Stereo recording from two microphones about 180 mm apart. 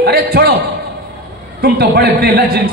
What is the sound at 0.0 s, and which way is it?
Speech, 60° right (ahead or behind).